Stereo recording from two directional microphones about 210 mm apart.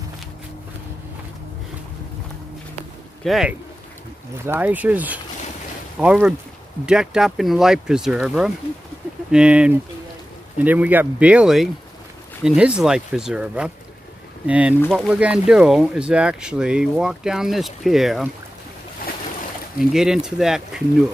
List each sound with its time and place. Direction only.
3.3 s speech: centre (ahead or behind)
19.0 s boat: 45° left (ahead or behind)
19.8 s speech: centre (ahead or behind)